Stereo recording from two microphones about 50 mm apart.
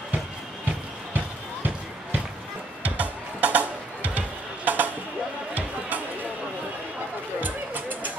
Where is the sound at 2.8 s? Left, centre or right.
Right.